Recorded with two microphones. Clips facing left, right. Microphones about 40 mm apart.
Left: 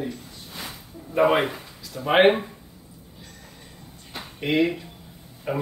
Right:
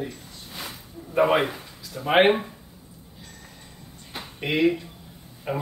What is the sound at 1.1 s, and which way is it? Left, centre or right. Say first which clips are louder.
Speech: left 1 dB; centre.